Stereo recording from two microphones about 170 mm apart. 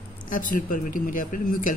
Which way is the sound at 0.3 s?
55° left (ahead or behind).